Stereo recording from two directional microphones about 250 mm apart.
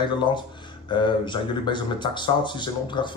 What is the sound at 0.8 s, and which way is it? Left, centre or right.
Speech, centre.